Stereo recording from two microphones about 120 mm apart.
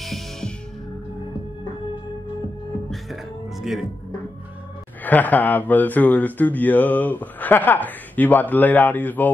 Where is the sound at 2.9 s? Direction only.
Centre (ahead or behind).